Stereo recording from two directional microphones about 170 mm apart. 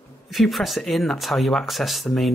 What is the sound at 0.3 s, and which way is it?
Speech, centre (ahead or behind).